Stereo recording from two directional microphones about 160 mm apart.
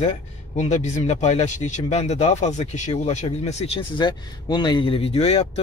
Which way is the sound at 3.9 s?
30° left (ahead or behind).